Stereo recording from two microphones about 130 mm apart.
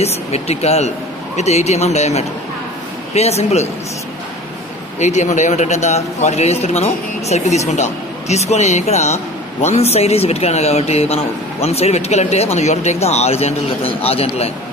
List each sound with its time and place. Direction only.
0.0 s a man's voice: 55° left (ahead or behind)
4.9 s a man's voice: 65° left (ahead or behind); by 14.5 s 50° left (ahead or behind)